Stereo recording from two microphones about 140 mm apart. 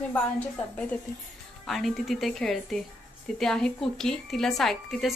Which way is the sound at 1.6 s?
Centre (ahead or behind).